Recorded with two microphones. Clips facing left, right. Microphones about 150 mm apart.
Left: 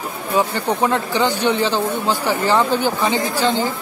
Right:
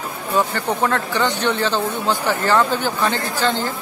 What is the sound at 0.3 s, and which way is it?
Speech, 15° left (ahead or behind).